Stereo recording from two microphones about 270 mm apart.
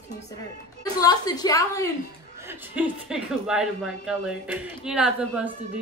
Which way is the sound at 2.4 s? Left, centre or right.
Centre.